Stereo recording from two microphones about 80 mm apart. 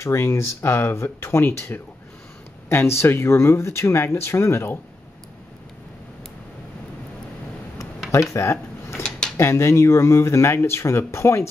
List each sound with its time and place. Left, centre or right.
0.0 s speech: left
8.1 s speech: left